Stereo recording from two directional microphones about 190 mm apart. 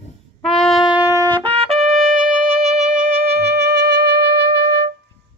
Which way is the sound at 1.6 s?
35° right (ahead or behind).